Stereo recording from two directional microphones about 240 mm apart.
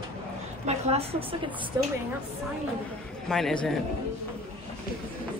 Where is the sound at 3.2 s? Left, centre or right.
Centre.